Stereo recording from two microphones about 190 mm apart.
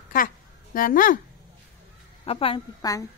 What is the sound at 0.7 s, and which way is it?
Speech, 45° left (ahead or behind).